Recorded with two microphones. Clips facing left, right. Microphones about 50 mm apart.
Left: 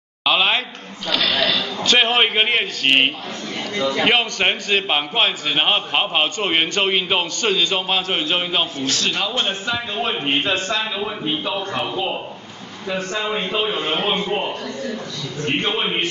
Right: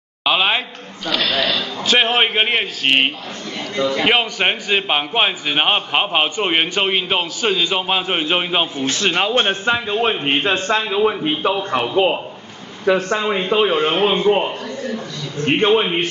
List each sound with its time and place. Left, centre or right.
0.2 s a man's voice: centre; by 12.2 s right
12.8 s speech: right
13.6 s speech: right
15.4 s speech: right